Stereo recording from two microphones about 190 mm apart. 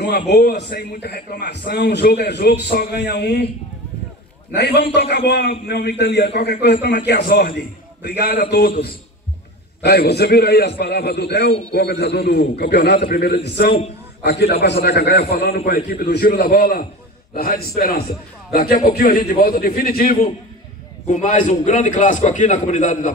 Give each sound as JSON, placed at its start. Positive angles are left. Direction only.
{"t": 0.0, "sound": "a man's voice", "side_deg": 55}
{"t": 4.6, "sound": "a man's voice", "side_deg": 60}
{"t": 21.1, "sound": "a man's voice", "side_deg": 40}